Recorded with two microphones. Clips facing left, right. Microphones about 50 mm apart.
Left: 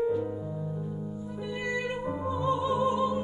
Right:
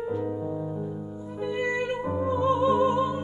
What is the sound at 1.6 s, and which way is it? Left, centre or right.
Music, right.